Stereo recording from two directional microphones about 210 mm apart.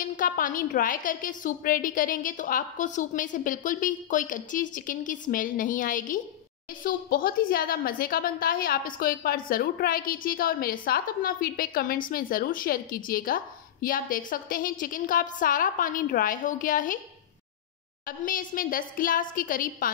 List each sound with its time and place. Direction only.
0.0 s a woman's voice: 40° left (ahead or behind)
18.0 s a woman's voice: 40° left (ahead or behind)